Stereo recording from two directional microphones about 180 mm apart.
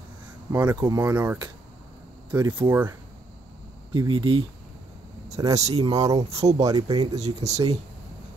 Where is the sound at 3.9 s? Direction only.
25° right (ahead or behind).